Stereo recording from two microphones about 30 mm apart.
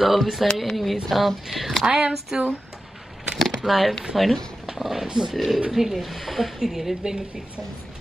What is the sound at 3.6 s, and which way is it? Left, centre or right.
Speech, centre.